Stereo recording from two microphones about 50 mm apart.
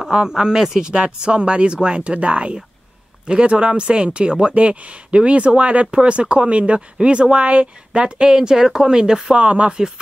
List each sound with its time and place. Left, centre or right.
0.1 s speech: centre